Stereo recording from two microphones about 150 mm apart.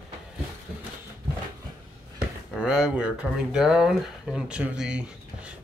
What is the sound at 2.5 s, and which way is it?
Speech, 5° right (ahead or behind).